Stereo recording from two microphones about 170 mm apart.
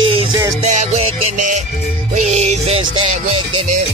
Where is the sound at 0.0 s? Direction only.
30° right (ahead or behind).